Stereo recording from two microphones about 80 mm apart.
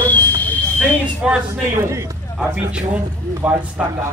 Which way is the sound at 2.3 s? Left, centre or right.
Centre.